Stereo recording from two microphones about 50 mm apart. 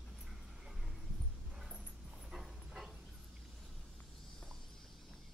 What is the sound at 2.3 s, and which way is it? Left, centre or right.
Dog, centre.